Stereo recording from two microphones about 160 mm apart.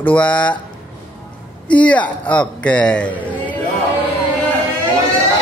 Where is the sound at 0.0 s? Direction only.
10° left (ahead or behind).